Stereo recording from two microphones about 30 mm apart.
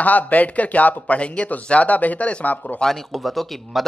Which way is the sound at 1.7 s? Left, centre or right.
Left.